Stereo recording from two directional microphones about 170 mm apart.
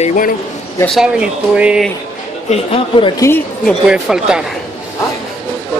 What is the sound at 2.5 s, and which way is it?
Speech, 35° left (ahead or behind).